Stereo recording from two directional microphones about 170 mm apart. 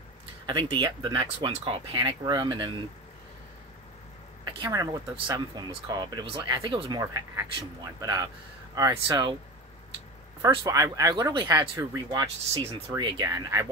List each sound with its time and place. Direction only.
0.5 s speech: 25° right (ahead or behind)
4.5 s speech: 20° right (ahead or behind)
10.6 s speech: 20° right (ahead or behind)